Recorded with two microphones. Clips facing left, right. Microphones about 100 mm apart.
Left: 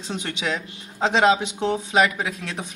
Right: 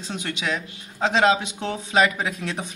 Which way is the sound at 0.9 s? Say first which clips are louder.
Left 1 dB; 20° left (ahead or behind).